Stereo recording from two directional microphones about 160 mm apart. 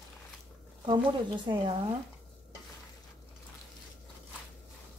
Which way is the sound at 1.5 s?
25° right (ahead or behind).